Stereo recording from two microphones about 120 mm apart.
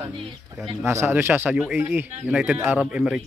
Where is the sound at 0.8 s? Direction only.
20° right (ahead or behind).